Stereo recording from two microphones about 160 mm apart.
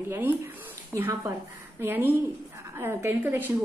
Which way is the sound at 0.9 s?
15° right (ahead or behind).